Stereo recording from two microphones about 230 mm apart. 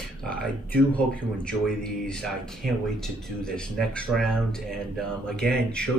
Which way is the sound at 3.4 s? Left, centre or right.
Centre.